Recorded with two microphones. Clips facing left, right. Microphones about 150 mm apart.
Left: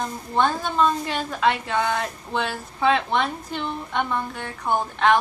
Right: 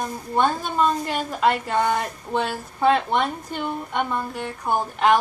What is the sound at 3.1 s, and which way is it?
A woman's voice, 10° right (ahead or behind).